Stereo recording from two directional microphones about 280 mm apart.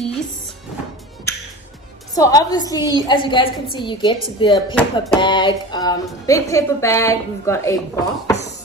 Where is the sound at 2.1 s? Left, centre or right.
Centre.